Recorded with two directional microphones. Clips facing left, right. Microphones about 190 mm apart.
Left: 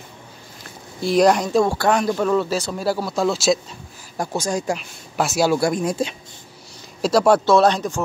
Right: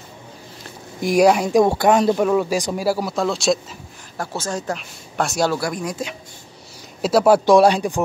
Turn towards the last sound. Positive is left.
turn(degrees=-10)  # may be behind; listen again after turning